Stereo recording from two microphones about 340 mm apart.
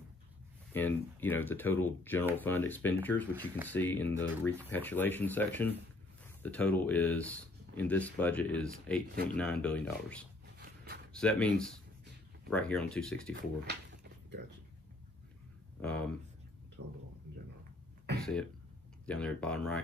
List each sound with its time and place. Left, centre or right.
0.7 s speech: centre
10.4 s a sound: right
11.1 s speech: centre
13.1 s speech: right
15.8 s speech: centre
18.2 s speech: centre